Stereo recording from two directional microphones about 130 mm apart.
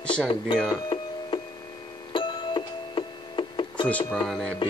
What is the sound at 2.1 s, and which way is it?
Music, 40° left (ahead or behind).